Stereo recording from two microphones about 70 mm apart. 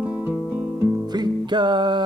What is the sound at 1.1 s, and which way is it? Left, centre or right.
Music, right.